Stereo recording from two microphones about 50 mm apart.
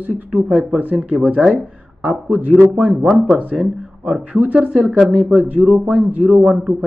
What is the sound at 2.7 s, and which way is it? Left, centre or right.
Speech, right.